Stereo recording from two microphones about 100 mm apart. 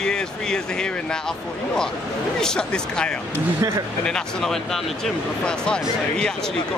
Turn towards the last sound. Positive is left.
turn(degrees=10)  # may be behind; listen again after turning